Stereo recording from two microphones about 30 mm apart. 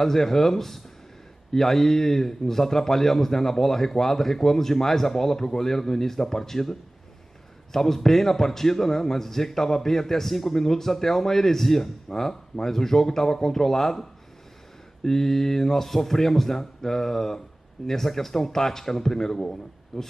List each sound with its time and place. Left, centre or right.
0.0 s a man's voice: centre
12.1 s a man's voice: centre
15.0 s a man's voice: centre
19.9 s speech: centre